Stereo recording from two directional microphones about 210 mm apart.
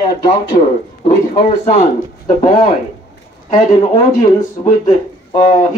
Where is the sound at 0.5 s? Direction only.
35° left (ahead or behind).